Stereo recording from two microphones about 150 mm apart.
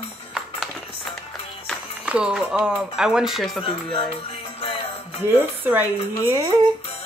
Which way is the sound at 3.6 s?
35° left (ahead or behind).